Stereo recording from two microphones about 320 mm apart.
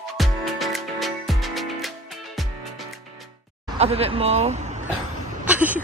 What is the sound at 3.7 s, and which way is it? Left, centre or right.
Speech, centre.